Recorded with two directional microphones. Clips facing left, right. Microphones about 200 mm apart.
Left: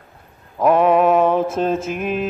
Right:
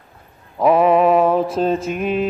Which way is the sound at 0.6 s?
5° right (ahead or behind).